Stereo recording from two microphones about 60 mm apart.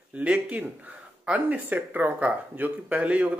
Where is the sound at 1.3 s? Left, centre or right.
Right.